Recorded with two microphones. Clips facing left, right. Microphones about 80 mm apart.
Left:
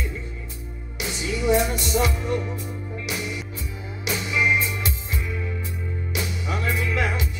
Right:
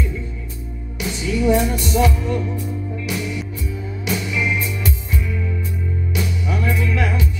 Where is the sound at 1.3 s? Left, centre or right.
Centre.